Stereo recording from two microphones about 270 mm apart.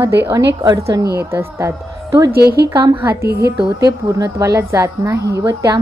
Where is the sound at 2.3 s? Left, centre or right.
Right.